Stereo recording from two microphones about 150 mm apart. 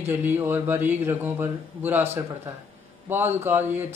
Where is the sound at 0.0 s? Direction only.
15° right (ahead or behind).